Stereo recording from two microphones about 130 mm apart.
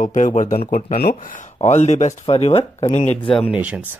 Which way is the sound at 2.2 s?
50° left (ahead or behind).